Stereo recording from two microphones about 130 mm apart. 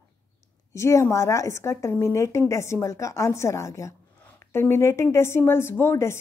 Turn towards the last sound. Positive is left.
turn(degrees=20)  # may be behind; listen again after turning